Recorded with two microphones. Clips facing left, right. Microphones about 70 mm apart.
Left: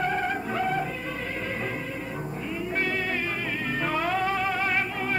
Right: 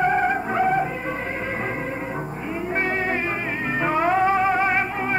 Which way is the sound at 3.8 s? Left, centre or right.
Right.